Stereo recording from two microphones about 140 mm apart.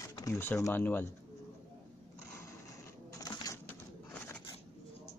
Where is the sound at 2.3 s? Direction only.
20° left (ahead or behind).